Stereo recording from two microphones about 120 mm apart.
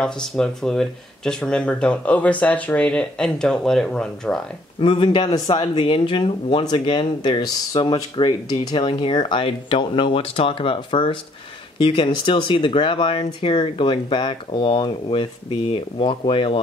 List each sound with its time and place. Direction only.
0.0 s speech: 5° left (ahead or behind)
4.7 s speech: 45° left (ahead or behind)